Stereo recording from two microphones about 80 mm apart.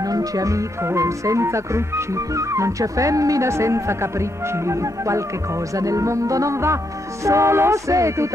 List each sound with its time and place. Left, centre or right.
0.0 s speech: right
5.8 s music: right
7.2 s speech: right